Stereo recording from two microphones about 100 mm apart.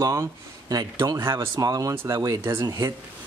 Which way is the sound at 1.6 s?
40° right (ahead or behind).